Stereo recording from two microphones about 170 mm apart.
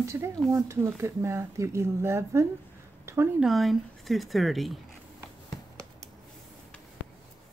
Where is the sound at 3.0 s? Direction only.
15° right (ahead or behind).